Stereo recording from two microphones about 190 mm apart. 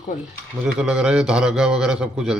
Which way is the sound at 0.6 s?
5° right (ahead or behind).